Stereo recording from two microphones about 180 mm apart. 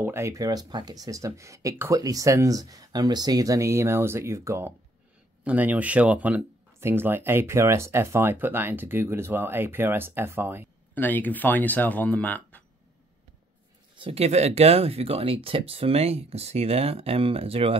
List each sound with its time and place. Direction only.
0.0 s speech: 15° right (ahead or behind)
11.0 s speech: 10° left (ahead or behind)
13.9 s speech: 30° right (ahead or behind)